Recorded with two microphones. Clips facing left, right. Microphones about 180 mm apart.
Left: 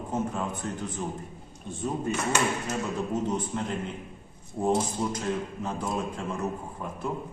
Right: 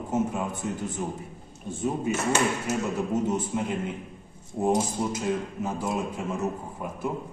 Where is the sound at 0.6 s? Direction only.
10° right (ahead or behind).